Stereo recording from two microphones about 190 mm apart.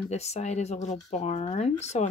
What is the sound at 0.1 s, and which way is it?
Speech, 35° left (ahead or behind).